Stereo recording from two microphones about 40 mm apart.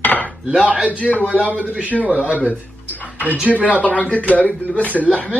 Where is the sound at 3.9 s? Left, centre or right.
Left.